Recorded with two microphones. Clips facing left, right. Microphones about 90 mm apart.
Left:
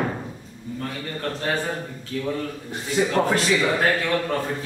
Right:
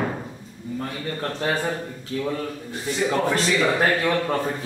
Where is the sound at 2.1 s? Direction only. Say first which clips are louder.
Right 2 dB; 25° right (ahead or behind).